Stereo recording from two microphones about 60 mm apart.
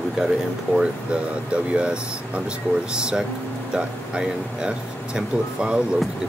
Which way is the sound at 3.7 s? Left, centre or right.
Centre.